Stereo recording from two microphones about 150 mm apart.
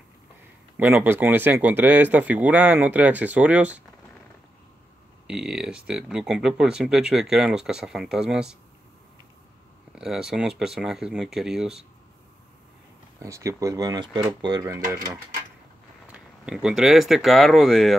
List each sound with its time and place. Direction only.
0.7 s speech: 15° right (ahead or behind)
5.2 s speech: 5° right (ahead or behind)
9.9 s speech: 5° right (ahead or behind)
13.2 s speech: 20° right (ahead or behind)
16.1 s speech: 5° right (ahead or behind)